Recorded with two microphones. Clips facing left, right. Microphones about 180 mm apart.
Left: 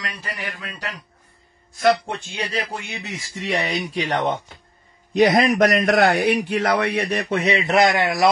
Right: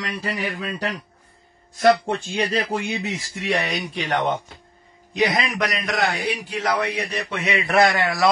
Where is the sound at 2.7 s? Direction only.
30° right (ahead or behind).